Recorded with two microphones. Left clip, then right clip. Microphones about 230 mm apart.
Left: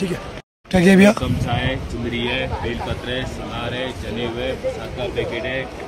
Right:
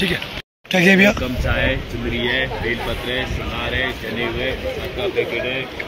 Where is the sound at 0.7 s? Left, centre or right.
Left.